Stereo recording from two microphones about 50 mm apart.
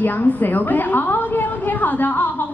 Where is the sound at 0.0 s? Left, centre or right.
Left.